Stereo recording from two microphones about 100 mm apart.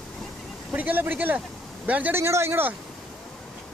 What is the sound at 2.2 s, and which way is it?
Speech, 25° right (ahead or behind).